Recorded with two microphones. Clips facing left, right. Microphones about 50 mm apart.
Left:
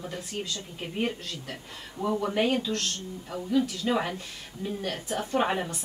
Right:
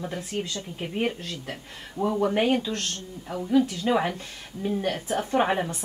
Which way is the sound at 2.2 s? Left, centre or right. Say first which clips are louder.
Right 2 dB; centre.